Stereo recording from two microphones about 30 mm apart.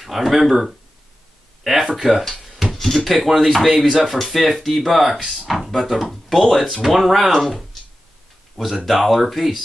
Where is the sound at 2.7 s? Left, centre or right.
Centre.